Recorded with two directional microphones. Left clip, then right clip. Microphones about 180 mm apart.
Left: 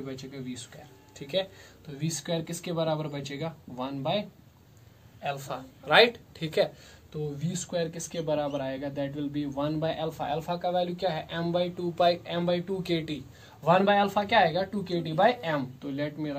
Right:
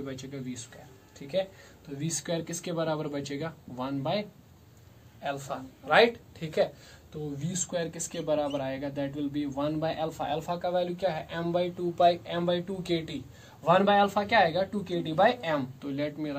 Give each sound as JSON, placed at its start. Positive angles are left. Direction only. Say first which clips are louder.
{"t": 0.0, "sound": "speech", "louder": "right 1 dB", "side_deg": 15}
{"t": 1.2, "sound": "speech", "louder": "even", "side_deg": 40}
{"t": 2.0, "sound": "speech", "louder": "even", "side_deg": 15}
{"t": 5.2, "sound": "a man's voice", "louder": "even", "side_deg": 25}
{"t": 5.9, "sound": "speech", "louder": "left 1 dB", "side_deg": 40}
{"t": 7.4, "sound": "speech", "louder": "even", "side_deg": 5}
{"t": 13.7, "sound": "speech", "louder": "even", "side_deg": 15}